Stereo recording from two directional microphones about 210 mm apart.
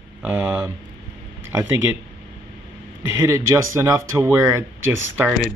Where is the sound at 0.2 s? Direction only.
5° right (ahead or behind).